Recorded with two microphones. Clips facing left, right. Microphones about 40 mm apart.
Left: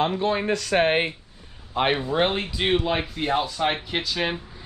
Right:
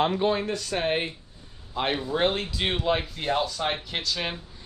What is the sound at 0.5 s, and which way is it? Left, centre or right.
Speech, left.